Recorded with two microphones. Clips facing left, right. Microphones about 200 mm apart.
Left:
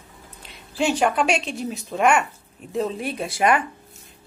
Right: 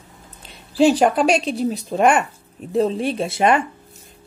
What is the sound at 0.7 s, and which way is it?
Speech, 35° right (ahead or behind).